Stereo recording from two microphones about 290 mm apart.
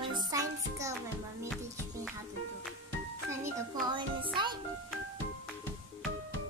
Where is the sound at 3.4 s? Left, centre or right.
Centre.